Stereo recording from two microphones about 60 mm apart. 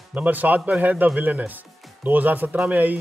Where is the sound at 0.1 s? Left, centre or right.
Right.